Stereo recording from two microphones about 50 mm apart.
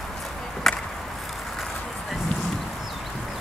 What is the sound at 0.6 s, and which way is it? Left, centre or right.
Chop, centre.